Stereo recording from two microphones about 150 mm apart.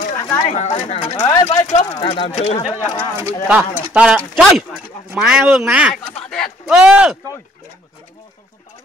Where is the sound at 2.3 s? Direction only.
50° left (ahead or behind).